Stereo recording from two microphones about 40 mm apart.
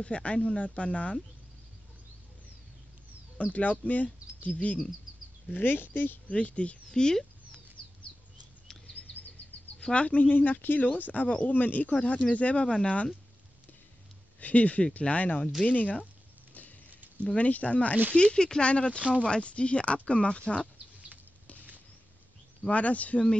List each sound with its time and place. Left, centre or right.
0.0 s speech: left
3.3 s speech: left
5.6 s speech: left
6.2 s speech: left
6.9 s speech: centre
9.9 s speech: left
14.4 s speech: left
17.4 s speech: left
18.1 s speech: left
18.9 s speech: right
19.2 s speech: left
22.7 s speech: left